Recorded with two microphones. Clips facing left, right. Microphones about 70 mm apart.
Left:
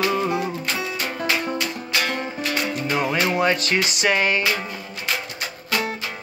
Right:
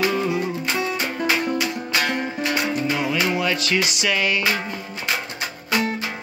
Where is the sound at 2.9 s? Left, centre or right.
Left.